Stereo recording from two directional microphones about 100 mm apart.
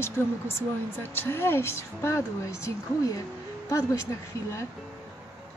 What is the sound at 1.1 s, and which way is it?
Speech, 25° left (ahead or behind).